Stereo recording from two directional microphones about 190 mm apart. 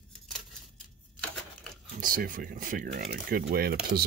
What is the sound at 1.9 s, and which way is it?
Speech, 45° right (ahead or behind).